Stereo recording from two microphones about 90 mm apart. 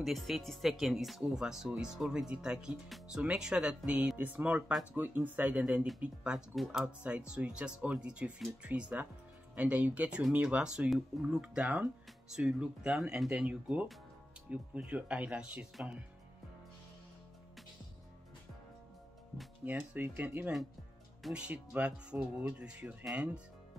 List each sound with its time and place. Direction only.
0.0 s speech: centre (ahead or behind)
6.5 s speech: centre (ahead or behind)
6.8 s speech: 15° right (ahead or behind)
19.6 s speech: 15° right (ahead or behind)